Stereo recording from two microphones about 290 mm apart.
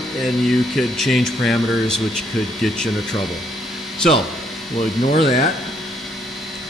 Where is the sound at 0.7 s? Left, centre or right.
Centre.